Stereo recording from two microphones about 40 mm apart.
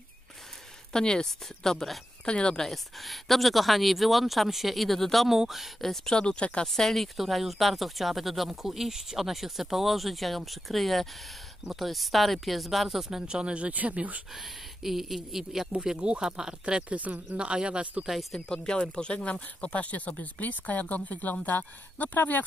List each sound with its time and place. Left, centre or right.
0.9 s a woman's voice: centre
2.2 s speech: left
2.6 s speech: centre
5.3 s speech: centre
5.8 s a woman's voice: centre
6.1 s speech: left
6.7 s a woman's voice: centre
13.3 s speech: right
14.3 s speech: centre
16.0 s speech: right
17.1 s speech: right
17.4 s speech: right
18.3 s speech: left